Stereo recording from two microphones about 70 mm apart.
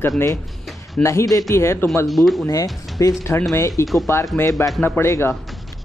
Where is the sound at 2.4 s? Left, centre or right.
Left.